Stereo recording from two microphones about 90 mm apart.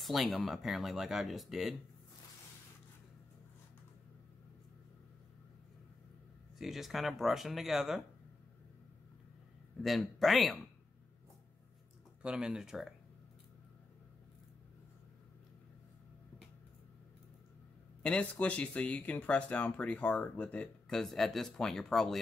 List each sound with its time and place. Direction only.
0.0 s speech: centre (ahead or behind)
6.6 s speech: centre (ahead or behind)
9.8 s speech: centre (ahead or behind)
12.2 s speech: 10° right (ahead or behind)
18.0 s speech: 15° left (ahead or behind)
21.0 s speech: 5° left (ahead or behind)